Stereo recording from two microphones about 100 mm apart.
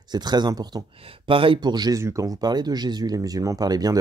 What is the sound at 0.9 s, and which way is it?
Speech, 65° right (ahead or behind).